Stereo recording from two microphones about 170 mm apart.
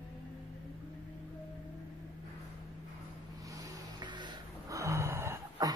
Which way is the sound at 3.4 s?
20° right (ahead or behind).